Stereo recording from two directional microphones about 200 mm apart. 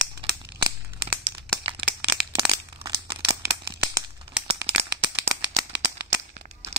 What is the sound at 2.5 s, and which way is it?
Crumpling, 15° right (ahead or behind).